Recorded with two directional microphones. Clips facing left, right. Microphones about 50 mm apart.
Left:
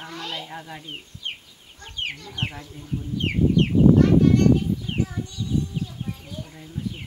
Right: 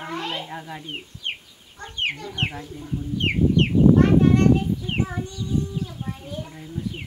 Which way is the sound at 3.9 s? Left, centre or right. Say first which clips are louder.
Even; right.